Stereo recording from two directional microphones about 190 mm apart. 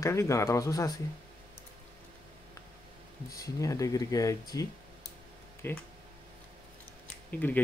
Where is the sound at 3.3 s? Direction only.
15° left (ahead or behind).